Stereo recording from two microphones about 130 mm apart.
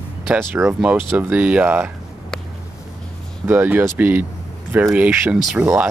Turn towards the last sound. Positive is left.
turn(degrees=-10)  # may be behind; listen again after turning